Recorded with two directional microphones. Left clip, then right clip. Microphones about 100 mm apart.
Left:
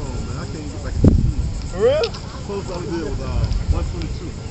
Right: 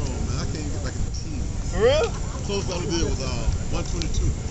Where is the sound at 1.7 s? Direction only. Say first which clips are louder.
Left 3 dB; 35° right (ahead or behind).